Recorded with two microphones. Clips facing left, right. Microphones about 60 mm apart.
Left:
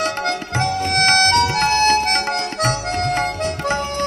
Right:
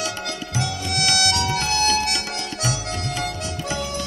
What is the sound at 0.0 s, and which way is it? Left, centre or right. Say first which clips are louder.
Music: left 7 dB; left.